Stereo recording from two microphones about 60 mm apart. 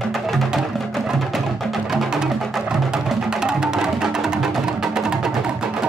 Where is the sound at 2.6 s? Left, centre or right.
Centre.